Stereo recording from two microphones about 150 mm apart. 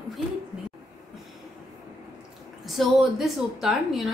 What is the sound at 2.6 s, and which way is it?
A woman's voice, centre (ahead or behind).